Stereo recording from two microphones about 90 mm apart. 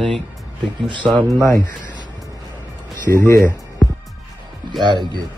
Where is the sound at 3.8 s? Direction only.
Centre (ahead or behind).